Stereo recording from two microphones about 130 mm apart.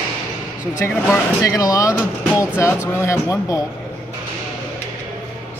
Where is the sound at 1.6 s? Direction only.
25° left (ahead or behind).